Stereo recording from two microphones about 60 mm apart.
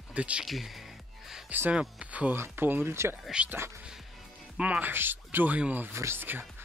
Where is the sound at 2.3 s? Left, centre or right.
Right.